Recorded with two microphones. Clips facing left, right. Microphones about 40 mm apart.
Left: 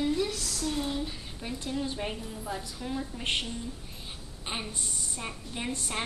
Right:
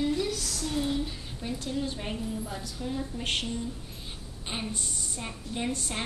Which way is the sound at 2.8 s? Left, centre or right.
Centre.